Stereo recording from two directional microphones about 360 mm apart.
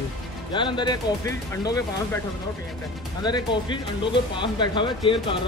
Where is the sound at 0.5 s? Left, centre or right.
Centre.